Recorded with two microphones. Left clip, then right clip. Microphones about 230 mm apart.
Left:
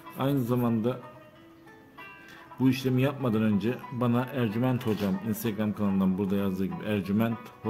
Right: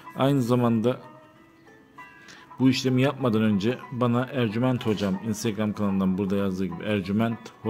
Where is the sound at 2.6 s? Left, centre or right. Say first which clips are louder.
Right 4 dB; centre.